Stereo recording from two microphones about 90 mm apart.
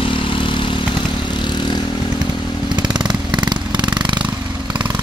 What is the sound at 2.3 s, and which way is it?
Chainsaw, 55° left (ahead or behind).